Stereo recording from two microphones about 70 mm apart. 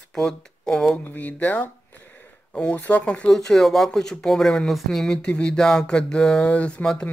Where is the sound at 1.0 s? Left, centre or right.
Left.